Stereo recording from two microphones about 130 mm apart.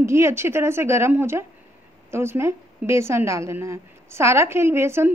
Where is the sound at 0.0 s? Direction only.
20° right (ahead or behind).